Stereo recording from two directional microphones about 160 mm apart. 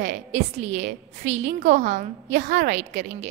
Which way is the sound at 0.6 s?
45° right (ahead or behind).